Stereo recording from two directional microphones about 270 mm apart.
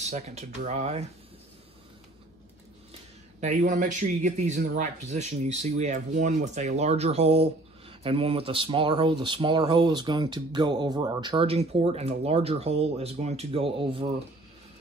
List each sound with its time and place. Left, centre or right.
0.0 s speech: right
3.3 s speech: right